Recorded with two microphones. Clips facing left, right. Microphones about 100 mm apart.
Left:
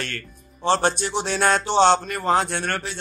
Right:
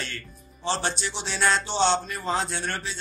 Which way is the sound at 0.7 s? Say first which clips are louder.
Left 7 dB; 55° left (ahead or behind).